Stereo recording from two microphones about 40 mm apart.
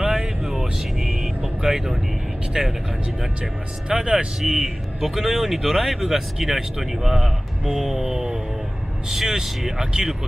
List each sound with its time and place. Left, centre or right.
0.0 s vehicle: centre
2.6 s speech: centre
3.9 s speech: right
4.4 s speech: centre